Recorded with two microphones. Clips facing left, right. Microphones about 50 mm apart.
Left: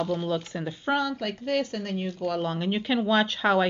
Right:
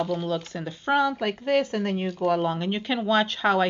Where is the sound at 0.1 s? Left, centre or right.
Centre.